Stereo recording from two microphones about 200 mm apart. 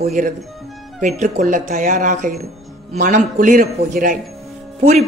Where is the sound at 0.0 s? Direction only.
35° right (ahead or behind).